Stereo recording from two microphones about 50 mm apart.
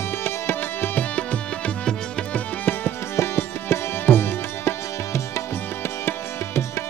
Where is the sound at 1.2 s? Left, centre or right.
Left.